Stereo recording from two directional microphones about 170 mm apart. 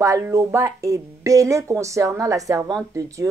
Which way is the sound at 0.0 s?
15° right (ahead or behind).